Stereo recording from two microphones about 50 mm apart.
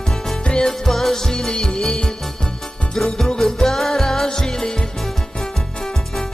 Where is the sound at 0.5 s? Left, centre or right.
Centre.